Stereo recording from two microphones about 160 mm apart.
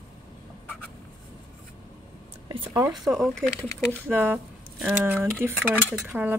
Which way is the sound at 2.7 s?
20° right (ahead or behind).